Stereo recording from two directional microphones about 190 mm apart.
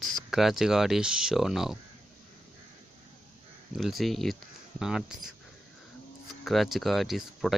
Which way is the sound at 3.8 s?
Centre (ahead or behind).